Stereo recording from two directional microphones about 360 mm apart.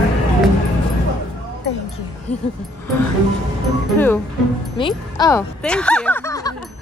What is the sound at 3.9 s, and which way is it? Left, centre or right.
A woman's voice, centre.